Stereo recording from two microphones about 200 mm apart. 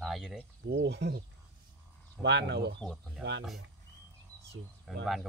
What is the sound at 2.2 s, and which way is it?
Speech, 60° right (ahead or behind).